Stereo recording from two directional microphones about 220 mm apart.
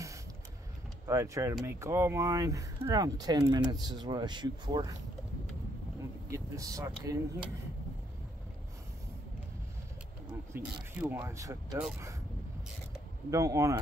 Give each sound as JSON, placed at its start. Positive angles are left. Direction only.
{"t": 1.0, "sound": "speech", "side_deg": -15}
{"t": 6.3, "sound": "speech", "side_deg": -15}
{"t": 10.5, "sound": "speech", "side_deg": -5}
{"t": 13.3, "sound": "speech", "side_deg": -15}